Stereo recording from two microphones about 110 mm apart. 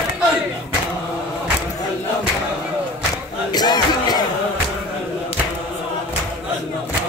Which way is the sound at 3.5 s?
40° left (ahead or behind).